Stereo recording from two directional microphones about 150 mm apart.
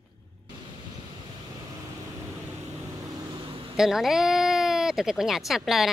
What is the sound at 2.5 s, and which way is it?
Vehicle, 20° right (ahead or behind).